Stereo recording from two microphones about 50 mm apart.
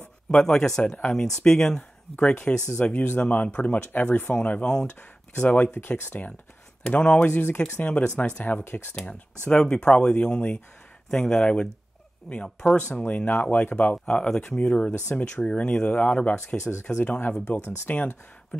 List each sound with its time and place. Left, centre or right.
0.3 s speech: centre; by 4.6 s left
4.6 s speech: centre
5.3 s speech: left
7.2 s speech: left
8.9 s speech: left
17.8 s speech: left